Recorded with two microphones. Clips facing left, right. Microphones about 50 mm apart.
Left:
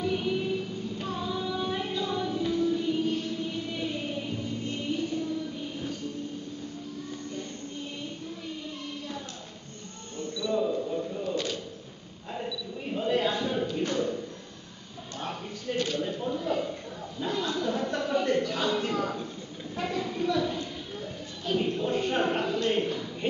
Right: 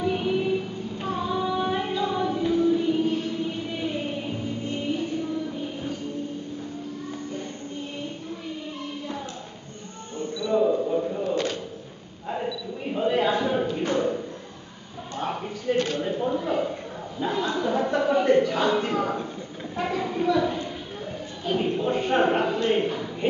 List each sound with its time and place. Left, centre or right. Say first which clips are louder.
0.0 s female singing: right 4 dB; centre
3.3 s music: right 3 dB; centre
10.1 s a sound: right 5 dB; centre